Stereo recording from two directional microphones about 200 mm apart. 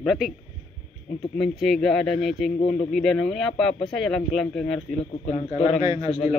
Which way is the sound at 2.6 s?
30° left (ahead or behind).